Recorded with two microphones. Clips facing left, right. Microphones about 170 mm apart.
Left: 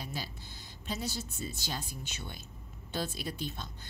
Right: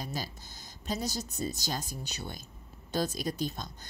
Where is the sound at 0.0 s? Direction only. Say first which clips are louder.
Right 3 dB; 40° right (ahead or behind).